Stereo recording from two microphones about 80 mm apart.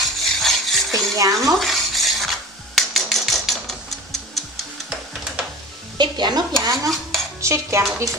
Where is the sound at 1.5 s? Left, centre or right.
Centre.